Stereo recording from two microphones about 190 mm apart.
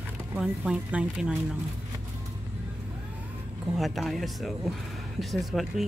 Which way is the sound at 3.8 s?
Centre (ahead or behind).